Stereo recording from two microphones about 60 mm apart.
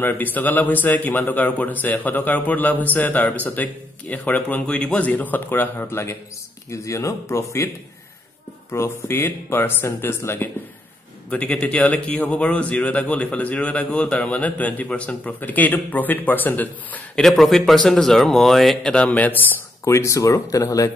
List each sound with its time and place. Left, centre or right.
0.0 s a man's voice: left
5.9 s a man's voice: left
6.7 s speech: left
8.7 s speech: left
11.2 s a man's voice: left
17.1 s speech: centre
18.9 s a man's voice: left
19.8 s speech: left